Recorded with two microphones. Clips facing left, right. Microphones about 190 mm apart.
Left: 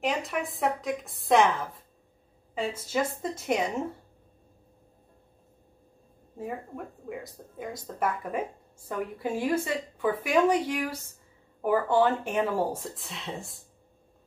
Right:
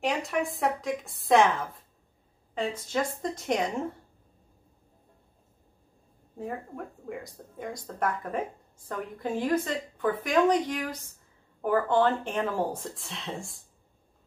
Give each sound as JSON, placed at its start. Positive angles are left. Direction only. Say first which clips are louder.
{"t": 0.0, "sound": "speech", "louder": "right 1 dB", "side_deg": 0}
{"t": 6.3, "sound": "speech", "louder": "even", "side_deg": 5}